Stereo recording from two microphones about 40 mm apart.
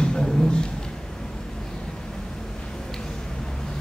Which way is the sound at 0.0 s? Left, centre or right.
Centre.